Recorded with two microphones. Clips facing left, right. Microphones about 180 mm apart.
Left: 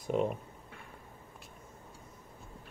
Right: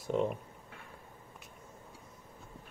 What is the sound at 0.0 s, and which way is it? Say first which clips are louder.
Speech: left 1 dB; 15° left (ahead or behind).